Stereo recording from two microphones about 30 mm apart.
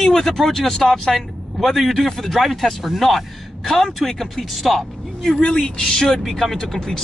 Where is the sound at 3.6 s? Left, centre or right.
Centre.